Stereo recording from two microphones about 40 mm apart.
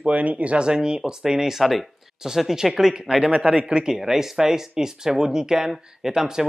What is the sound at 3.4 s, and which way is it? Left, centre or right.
Speech, right.